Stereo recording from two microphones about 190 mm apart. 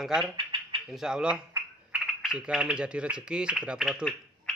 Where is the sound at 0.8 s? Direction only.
Centre (ahead or behind).